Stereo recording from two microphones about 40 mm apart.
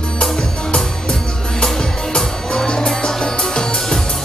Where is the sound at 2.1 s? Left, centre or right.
Centre.